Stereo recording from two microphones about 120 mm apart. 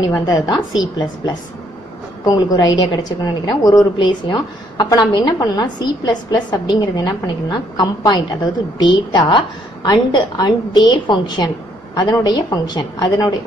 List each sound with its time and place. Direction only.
0.0 s a woman's voice: 30° left (ahead or behind)
2.2 s a woman's voice: 30° left (ahead or behind)